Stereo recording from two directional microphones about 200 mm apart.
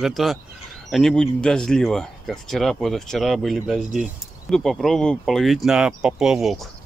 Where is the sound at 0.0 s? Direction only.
Centre (ahead or behind).